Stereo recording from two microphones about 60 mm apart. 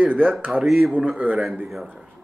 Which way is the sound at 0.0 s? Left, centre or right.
Right.